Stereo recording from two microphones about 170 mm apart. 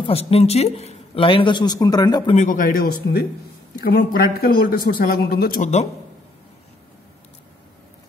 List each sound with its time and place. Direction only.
0.0 s speech: 35° left (ahead or behind)
2.3 s speech: 50° left (ahead or behind)